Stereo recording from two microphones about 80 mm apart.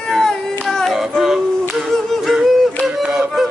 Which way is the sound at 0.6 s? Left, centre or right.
Centre.